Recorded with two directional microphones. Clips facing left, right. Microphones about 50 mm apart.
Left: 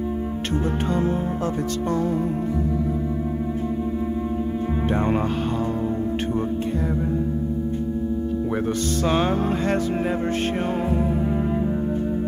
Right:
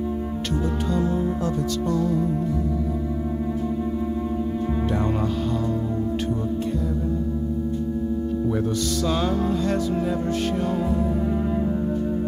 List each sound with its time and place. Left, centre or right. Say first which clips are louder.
0.5 s music: left 2 dB; left
4.7 s music: left 4 dB; left
8.5 s music: even; left